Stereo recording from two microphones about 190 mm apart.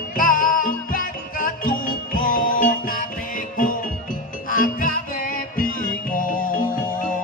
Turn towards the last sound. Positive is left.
turn(degrees=45)  # may be behind; listen again after turning